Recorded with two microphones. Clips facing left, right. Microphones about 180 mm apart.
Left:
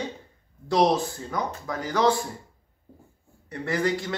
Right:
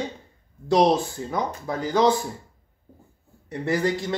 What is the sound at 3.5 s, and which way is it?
Speech, 20° right (ahead or behind).